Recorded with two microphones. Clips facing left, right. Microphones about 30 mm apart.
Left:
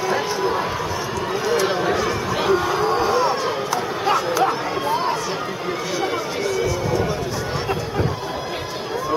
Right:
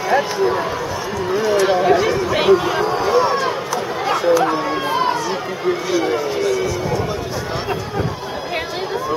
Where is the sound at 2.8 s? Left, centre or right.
Centre.